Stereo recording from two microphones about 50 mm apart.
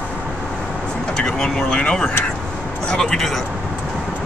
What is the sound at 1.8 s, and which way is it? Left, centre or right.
Speech, left.